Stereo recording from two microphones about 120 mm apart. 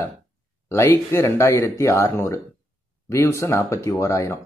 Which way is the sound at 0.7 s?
20° left (ahead or behind).